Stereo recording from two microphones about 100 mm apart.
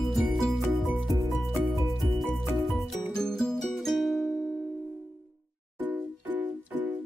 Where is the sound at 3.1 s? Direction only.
5° left (ahead or behind).